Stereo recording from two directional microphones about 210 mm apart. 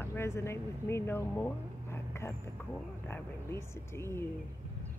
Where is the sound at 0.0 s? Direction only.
10° left (ahead or behind).